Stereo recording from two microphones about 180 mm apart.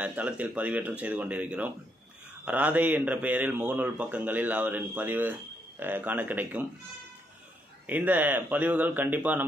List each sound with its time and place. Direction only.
0.0 s speech: 10° right (ahead or behind)
7.8 s speech: 10° right (ahead or behind)